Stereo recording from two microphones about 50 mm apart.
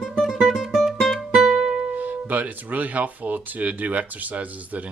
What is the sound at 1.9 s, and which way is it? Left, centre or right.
Music, right.